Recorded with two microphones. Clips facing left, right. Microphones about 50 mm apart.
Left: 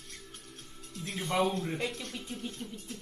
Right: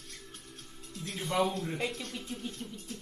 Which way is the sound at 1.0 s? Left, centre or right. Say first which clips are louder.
Left 1 dB; centre.